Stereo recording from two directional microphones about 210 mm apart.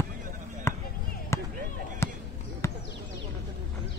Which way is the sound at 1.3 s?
15° left (ahead or behind).